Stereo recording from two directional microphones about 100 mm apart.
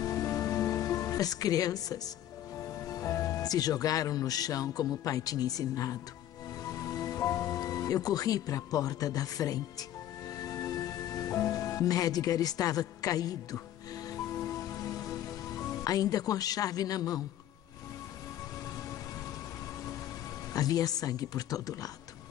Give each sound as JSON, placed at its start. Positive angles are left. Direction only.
{"t": 0.0, "sound": "music", "side_deg": 30}
{"t": 2.6, "sound": "speech", "side_deg": 35}
{"t": 6.7, "sound": "music", "side_deg": 35}
{"t": 14.0, "sound": "rain on surface", "side_deg": 30}
{"t": 20.5, "sound": "speech", "side_deg": 40}